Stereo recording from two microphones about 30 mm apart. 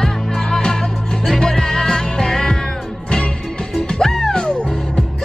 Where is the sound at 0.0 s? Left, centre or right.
Left.